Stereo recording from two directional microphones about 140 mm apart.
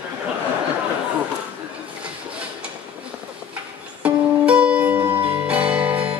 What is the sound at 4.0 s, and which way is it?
Music, 10° right (ahead or behind).